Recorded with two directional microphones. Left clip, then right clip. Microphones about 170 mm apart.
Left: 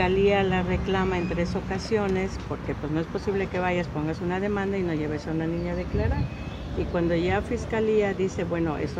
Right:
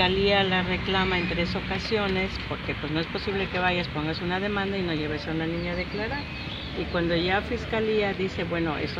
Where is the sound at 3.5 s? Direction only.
15° left (ahead or behind).